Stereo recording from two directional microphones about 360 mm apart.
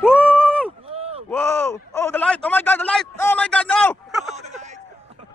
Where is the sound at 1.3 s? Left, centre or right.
Centre.